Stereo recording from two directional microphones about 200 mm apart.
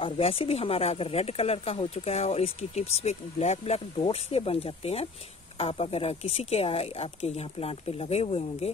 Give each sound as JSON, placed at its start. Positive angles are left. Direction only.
{"t": 0.0, "sound": "speech", "side_deg": 30}